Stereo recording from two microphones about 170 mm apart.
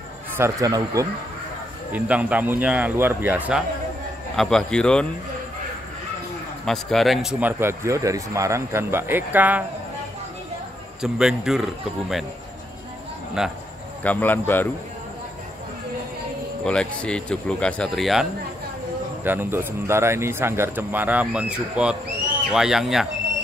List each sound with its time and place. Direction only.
0.4 s speech: 20° right (ahead or behind)
1.9 s a man's voice: 10° right (ahead or behind)
4.4 s speech: 5° left (ahead or behind)
6.6 s a man's voice: centre (ahead or behind)
11.0 s speech: 5° right (ahead or behind)
13.4 s speech: 5° right (ahead or behind)
14.0 s speech: 10° left (ahead or behind)
16.6 s speech: 5° left (ahead or behind)
19.2 s a man's voice: 10° right (ahead or behind)